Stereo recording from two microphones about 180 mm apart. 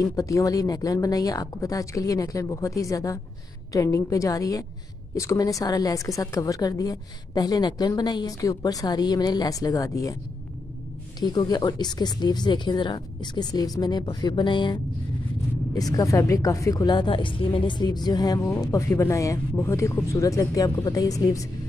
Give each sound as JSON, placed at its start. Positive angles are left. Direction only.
{"t": 0.0, "sound": "a woman's voice", "side_deg": 20}
{"t": 11.1, "sound": "a woman's voice", "side_deg": 25}